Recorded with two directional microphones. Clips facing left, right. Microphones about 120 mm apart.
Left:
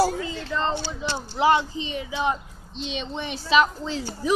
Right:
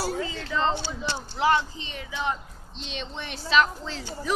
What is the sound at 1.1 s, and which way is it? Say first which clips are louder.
Speech: left 3 dB; 15° left (ahead or behind).